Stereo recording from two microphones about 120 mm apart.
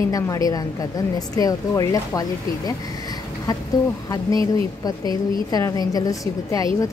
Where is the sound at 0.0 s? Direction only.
30° left (ahead or behind).